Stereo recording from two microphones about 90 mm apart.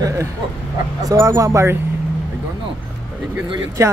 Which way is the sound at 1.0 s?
40° right (ahead or behind).